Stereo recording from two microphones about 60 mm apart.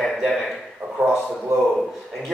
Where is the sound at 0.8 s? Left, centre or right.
Right.